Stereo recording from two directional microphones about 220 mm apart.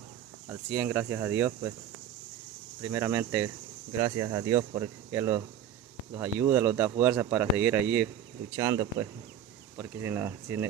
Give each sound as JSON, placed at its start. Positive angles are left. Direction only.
{"t": 0.5, "sound": "speech", "side_deg": -10}
{"t": 2.8, "sound": "speech", "side_deg": -15}